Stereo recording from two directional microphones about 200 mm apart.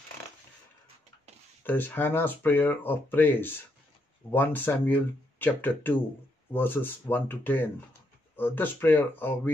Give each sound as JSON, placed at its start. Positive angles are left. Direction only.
{"t": 1.6, "sound": "speech", "side_deg": 10}